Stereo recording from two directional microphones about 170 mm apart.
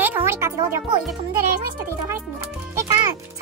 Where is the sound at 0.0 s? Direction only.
15° right (ahead or behind).